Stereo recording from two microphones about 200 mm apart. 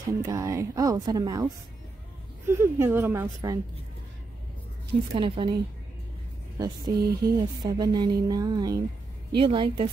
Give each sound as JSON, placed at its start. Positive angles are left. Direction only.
{"t": 0.2, "sound": "speech", "side_deg": -15}
{"t": 5.1, "sound": "speech", "side_deg": -25}
{"t": 6.6, "sound": "speech", "side_deg": -20}